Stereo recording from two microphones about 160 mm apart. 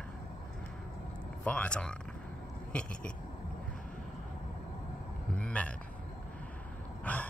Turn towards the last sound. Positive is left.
turn(degrees=10)  # may be behind; listen again after turning